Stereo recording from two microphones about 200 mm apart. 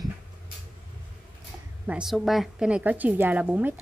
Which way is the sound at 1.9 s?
Centre (ahead or behind).